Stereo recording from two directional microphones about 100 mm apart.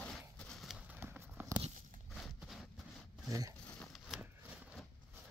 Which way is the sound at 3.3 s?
35° right (ahead or behind).